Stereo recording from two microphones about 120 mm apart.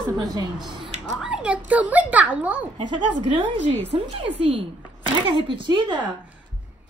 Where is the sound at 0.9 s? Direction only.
10° right (ahead or behind).